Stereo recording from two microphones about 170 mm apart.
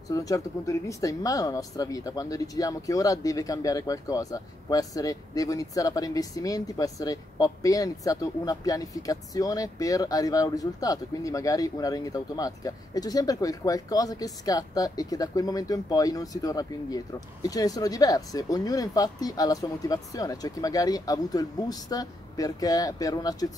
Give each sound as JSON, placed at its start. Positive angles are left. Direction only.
{"t": 0.1, "sound": "speech", "side_deg": 20}